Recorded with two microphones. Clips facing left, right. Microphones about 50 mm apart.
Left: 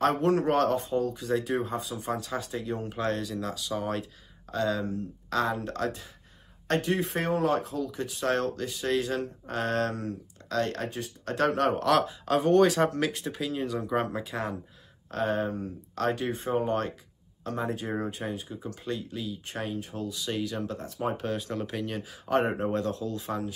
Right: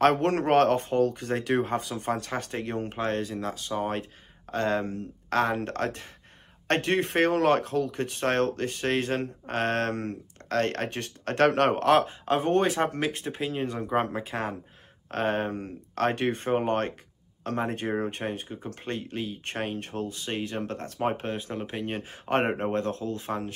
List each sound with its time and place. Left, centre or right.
0.0 s speech: right
3.0 s speech: right
11.9 s speech: right
22.5 s speech: right